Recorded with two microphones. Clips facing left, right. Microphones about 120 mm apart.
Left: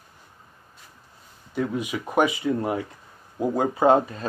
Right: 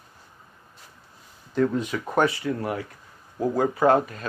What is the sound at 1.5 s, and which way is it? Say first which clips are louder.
Speech: right 3 dB; 10° left (ahead or behind).